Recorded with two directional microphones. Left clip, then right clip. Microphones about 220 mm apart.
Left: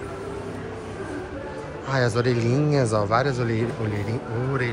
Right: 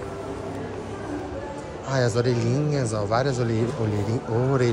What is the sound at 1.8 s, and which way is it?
Speech, 10° right (ahead or behind).